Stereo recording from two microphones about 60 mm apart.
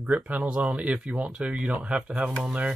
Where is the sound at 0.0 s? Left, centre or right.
Right.